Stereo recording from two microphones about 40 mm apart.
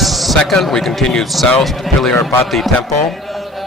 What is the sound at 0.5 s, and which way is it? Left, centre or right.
A man's voice, centre.